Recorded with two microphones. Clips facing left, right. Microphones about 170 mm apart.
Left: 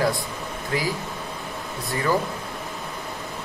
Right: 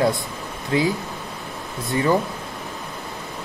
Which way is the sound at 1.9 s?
20° right (ahead or behind).